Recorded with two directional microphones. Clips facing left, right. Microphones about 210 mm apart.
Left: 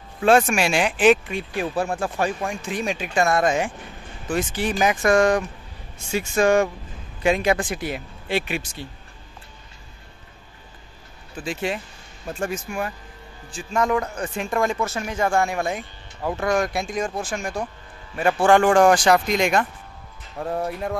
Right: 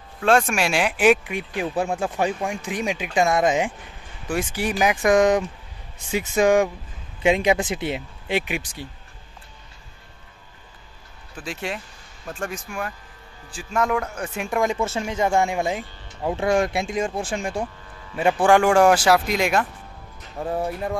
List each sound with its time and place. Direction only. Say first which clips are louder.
0.2 s speech: left 2 dB; 5° left (ahead or behind); by 8.8 s 15° right (ahead or behind)
11.3 s speech: left 4 dB; centre (ahead or behind); by 17.6 s 30° right (ahead or behind)
18.1 s speech: even; 15° right (ahead or behind)